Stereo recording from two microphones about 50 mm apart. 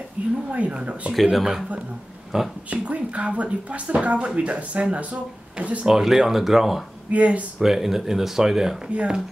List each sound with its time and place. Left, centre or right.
0.5 s speech: right
1.3 s speech: centre
2.7 s speech: right
5.9 s speech: centre
7.1 s speech: right
7.6 s speech: centre
8.9 s speech: centre